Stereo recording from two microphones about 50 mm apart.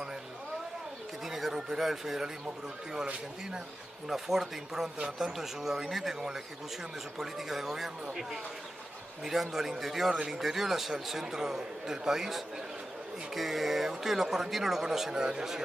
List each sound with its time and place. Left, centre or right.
1.2 s speech: centre
4.1 s a man's voice: centre
10.1 s speech: centre
10.4 s a man's voice: centre